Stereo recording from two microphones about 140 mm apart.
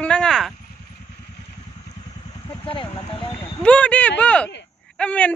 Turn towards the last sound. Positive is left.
turn(degrees=10)  # may be behind; listen again after turning